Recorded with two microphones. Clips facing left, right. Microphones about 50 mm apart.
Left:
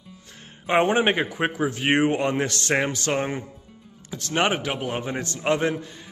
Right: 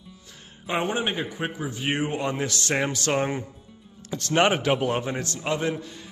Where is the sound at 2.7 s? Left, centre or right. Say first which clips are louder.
Left 2 dB; left.